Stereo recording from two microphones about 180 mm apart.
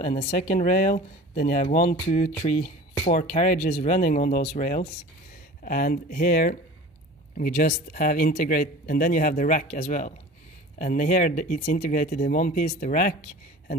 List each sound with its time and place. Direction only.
0.0 s speech: 40° left (ahead or behind)